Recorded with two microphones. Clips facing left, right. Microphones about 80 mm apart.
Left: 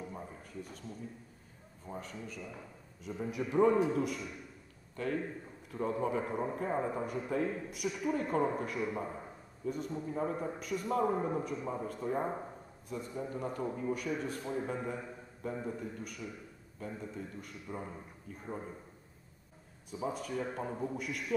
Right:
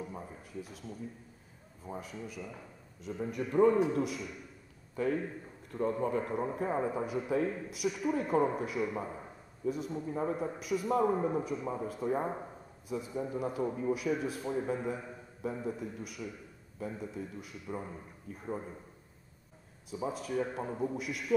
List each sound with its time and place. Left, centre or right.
0.0 s a sound: centre
1.9 s a man's voice: centre
19.9 s a man's voice: centre